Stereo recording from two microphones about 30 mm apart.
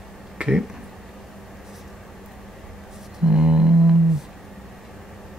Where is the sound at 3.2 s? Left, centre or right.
Right.